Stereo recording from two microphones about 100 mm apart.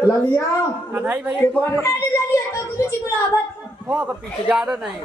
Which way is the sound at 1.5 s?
25° left (ahead or behind).